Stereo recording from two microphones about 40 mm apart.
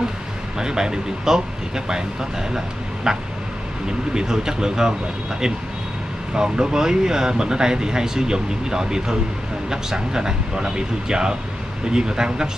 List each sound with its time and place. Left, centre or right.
0.6 s speech: centre
2.5 s speech: centre
6.3 s speech: centre